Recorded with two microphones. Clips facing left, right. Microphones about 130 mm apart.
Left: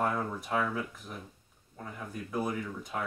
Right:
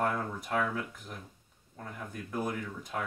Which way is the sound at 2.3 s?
5° left (ahead or behind).